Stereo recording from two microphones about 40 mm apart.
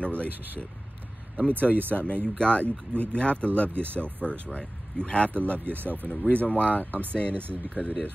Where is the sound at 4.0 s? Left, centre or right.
Left.